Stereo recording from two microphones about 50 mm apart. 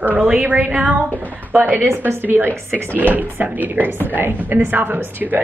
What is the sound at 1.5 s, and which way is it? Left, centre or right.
A woman's voice, right.